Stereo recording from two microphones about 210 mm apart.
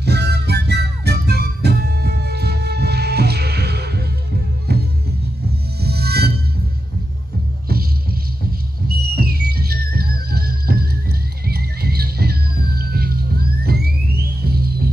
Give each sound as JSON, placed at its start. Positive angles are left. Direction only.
{"t": 0.0, "sound": "music", "side_deg": -50}
{"t": 5.8, "sound": "music", "side_deg": -50}
{"t": 7.6, "sound": "music", "side_deg": -45}